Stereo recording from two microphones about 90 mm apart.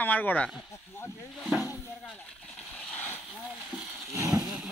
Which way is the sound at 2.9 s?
20° left (ahead or behind).